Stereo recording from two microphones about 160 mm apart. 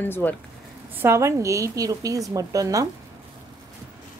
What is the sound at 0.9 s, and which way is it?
A woman's voice, 15° right (ahead or behind).